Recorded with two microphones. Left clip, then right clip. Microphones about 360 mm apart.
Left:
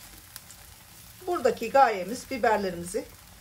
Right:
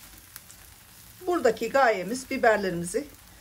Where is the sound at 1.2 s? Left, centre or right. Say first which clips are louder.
Right 2 dB; right.